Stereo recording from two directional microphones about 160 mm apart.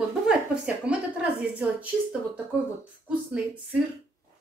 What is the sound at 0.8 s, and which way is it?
Speech, 10° right (ahead or behind).